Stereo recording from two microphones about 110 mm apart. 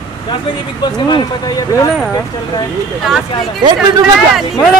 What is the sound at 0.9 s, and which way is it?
Speech, 40° left (ahead or behind).